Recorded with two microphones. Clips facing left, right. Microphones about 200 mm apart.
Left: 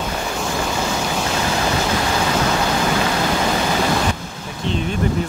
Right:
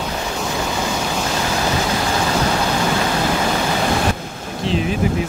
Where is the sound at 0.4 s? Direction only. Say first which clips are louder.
Even; centre (ahead or behind).